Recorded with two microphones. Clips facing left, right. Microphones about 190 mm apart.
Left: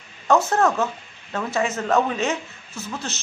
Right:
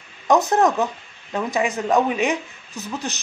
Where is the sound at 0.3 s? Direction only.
15° right (ahead or behind).